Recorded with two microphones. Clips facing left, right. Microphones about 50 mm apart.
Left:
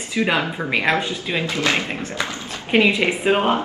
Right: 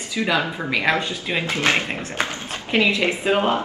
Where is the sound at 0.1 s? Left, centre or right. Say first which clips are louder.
Left 1 dB; left.